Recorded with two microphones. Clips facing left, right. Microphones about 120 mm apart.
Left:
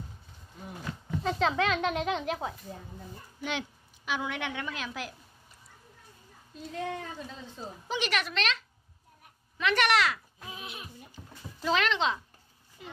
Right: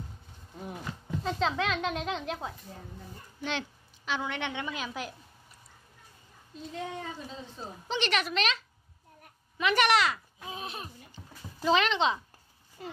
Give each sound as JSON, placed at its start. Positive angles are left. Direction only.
{"t": 1.2, "sound": "a woman's voice", "side_deg": 0}
{"t": 7.9, "sound": "speech", "side_deg": 5}
{"t": 9.6, "sound": "speech", "side_deg": -5}
{"t": 10.4, "sound": "a sound", "side_deg": -30}
{"t": 11.6, "sound": "speech", "side_deg": 0}
{"t": 12.8, "sound": "speech", "side_deg": -45}